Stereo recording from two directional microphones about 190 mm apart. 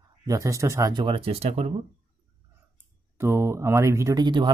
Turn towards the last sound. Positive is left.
turn(degrees=-25)  # may be behind; listen again after turning